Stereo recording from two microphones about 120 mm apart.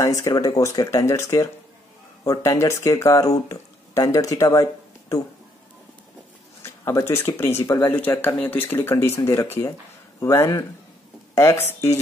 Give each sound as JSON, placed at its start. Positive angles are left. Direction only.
{"t": 0.2, "sound": "speech", "side_deg": 30}
{"t": 6.6, "sound": "speech", "side_deg": 25}